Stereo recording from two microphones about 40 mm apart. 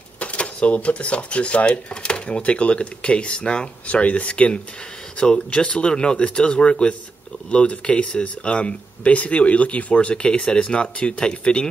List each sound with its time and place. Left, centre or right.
0.2 s speech: left
3.8 s speech: left